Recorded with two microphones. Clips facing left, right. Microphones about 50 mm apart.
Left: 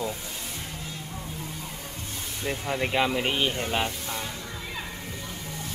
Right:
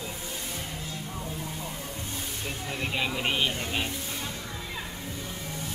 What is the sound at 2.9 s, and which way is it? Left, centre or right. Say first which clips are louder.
Speech: left 2 dB; centre.